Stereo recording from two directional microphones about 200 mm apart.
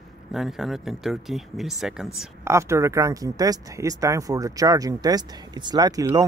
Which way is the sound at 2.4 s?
15° right (ahead or behind).